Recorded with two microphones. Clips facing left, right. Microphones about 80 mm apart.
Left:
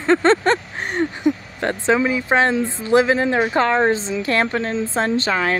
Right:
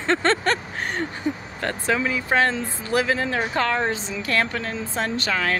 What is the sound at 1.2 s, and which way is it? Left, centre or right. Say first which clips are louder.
A woman's voice: left 6 dB; left.